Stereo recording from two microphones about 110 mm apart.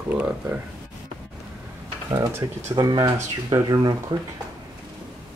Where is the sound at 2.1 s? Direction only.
30° right (ahead or behind).